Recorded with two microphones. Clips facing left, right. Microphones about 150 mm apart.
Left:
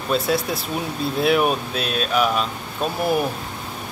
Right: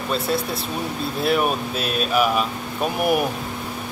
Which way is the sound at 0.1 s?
Centre (ahead or behind).